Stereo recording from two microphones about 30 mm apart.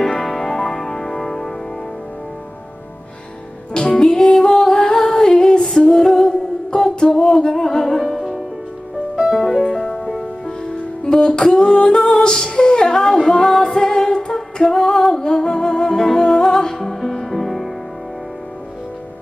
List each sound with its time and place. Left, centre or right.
0.2 s music: centre
3.9 s music: left
6.0 s humming: centre
7.2 s music: left; by 8.4 s centre
9.3 s music: centre
9.7 s music: centre
10.4 s music: left
11.4 s female singing: centre
15.2 s humming: left
16.0 s music: centre